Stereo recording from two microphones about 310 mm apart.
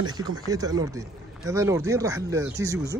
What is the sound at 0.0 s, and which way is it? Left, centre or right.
Speech, centre.